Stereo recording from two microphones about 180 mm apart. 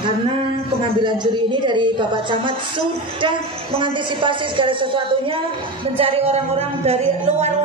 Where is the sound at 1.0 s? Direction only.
25° right (ahead or behind).